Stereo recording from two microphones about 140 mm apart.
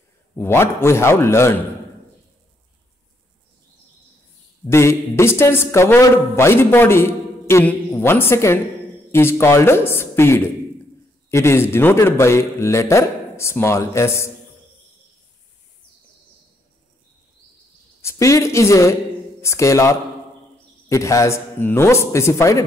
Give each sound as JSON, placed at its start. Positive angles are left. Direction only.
{"t": 0.4, "sound": "a man's voice", "side_deg": 15}
{"t": 4.6, "sound": "a man's voice", "side_deg": 20}
{"t": 18.0, "sound": "a man's voice", "side_deg": 20}